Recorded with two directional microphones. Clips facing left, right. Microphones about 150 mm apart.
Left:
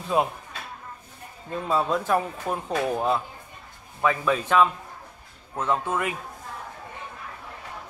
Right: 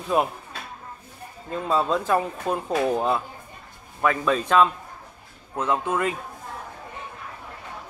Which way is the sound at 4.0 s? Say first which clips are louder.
Right 1 dB; 10° left (ahead or behind).